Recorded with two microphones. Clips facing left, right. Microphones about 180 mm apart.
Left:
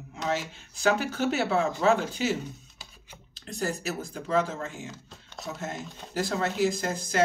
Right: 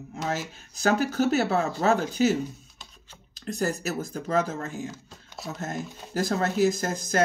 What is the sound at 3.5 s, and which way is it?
Speech, 45° right (ahead or behind).